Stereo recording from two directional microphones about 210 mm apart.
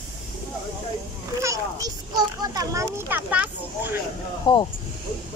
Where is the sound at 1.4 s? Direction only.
15° right (ahead or behind).